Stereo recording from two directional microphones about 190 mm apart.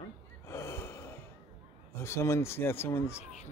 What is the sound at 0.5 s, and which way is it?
Gasp, 15° left (ahead or behind).